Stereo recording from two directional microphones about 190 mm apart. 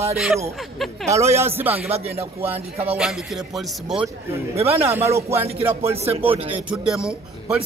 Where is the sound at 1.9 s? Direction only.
30° right (ahead or behind).